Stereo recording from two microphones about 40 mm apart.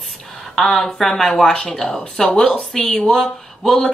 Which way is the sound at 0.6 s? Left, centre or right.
Centre.